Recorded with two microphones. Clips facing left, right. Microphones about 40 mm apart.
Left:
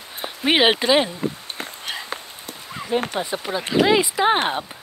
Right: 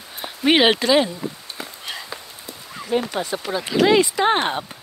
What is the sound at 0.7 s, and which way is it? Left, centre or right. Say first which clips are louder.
Speech: right 1 dB; left.